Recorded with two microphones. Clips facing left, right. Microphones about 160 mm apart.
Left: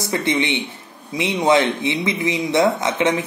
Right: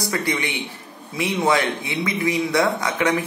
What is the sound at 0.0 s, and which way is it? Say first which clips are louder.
Speech: left 3 dB; 25° left (ahead or behind).